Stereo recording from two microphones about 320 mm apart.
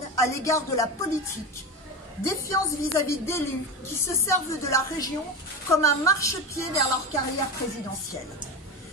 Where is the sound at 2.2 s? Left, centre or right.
Centre.